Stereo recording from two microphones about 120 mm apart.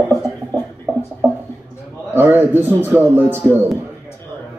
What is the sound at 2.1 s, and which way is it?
A man's voice, 15° right (ahead or behind).